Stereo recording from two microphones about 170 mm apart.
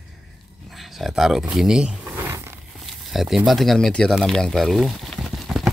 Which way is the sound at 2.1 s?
15° right (ahead or behind).